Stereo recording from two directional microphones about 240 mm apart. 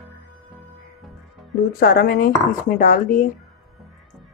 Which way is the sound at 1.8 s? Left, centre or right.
Left.